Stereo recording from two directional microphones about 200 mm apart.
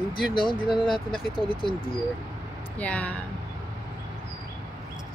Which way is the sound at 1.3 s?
25° left (ahead or behind).